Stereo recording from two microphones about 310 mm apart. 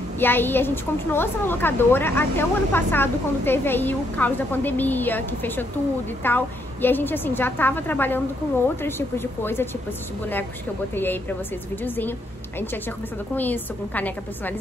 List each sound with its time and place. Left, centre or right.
0.2 s speech: centre
11.0 s a woman's voice: centre